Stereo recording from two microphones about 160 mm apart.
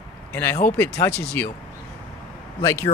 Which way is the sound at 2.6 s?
15° left (ahead or behind).